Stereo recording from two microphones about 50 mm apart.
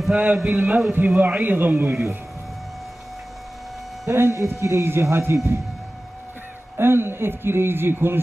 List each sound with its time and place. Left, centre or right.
0.1 s speech: right
4.2 s speech: right
4.8 s speech: right
6.8 s a man's voice: right